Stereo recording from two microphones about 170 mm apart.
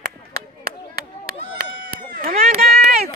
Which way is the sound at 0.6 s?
60° right (ahead or behind).